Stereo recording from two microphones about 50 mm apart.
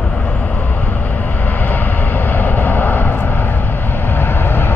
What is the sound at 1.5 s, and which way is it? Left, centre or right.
Vehicle, left.